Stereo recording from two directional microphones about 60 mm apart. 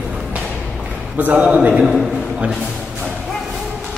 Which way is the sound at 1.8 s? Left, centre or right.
Centre.